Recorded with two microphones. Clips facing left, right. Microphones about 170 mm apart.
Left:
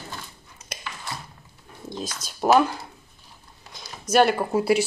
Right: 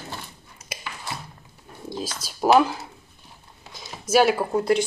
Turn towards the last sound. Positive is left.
turn(degrees=0)  # may be behind; listen again after turning